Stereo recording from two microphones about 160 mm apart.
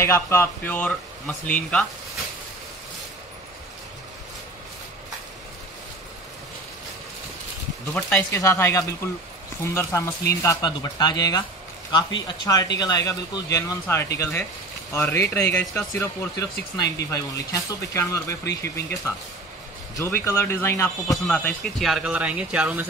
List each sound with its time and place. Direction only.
0.0 s speech: 15° left (ahead or behind)
7.9 s speech: 10° left (ahead or behind); by 22.8 s 10° right (ahead or behind)